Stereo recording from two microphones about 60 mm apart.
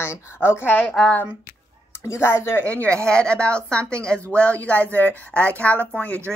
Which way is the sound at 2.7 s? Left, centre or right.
Left.